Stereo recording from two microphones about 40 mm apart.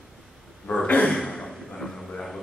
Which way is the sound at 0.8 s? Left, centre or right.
Left.